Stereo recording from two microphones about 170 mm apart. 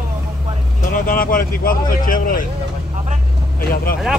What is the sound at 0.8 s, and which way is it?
Speech, 55° left (ahead or behind).